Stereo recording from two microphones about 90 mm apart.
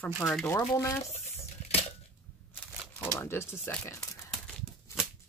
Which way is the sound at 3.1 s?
30° left (ahead or behind).